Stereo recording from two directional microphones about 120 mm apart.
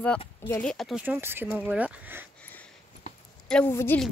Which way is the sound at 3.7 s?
20° left (ahead or behind).